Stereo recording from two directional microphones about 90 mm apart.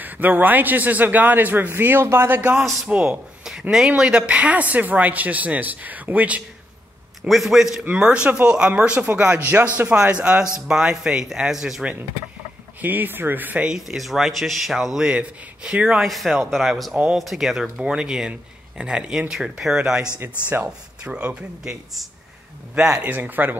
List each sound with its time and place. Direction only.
0.0 s a man's voice: 20° right (ahead or behind)
7.2 s speech: centre (ahead or behind)
7.8 s a man's voice: 15° right (ahead or behind)
12.8 s a man's voice: 20° right (ahead or behind)
13.7 s speech: 5° right (ahead or behind)
16.1 s speech: centre (ahead or behind)
16.9 s a man's voice: 10° right (ahead or behind)
20.2 s a man's voice: 25° right (ahead or behind)
21.0 s a man's voice: 15° right (ahead or behind)
23.0 s a man's voice: 20° right (ahead or behind)